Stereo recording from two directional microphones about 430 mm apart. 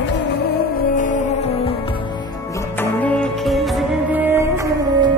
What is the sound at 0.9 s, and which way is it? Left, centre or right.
Music, centre.